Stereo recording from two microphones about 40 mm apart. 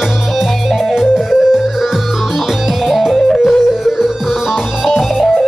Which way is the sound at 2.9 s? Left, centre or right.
Centre.